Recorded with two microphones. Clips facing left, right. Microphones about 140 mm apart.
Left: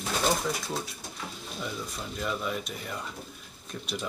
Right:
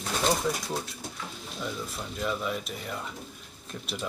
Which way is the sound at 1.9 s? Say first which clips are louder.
Right 2 dB; centre (ahead or behind).